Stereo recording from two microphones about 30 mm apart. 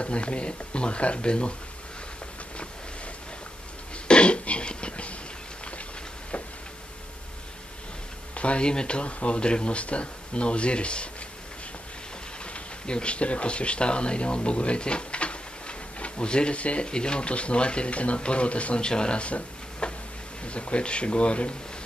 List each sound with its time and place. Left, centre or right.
0.0 s speech: left
4.1 s throat clearing: left
8.4 s speech: left
8.6 s speech: left
12.5 s speech: left
16.8 s speech: left
18.9 s speech: left
19.2 s a sound: left
20.4 s speech: left